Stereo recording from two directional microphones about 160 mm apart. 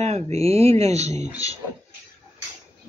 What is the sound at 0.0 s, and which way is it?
Speech, 40° right (ahead or behind).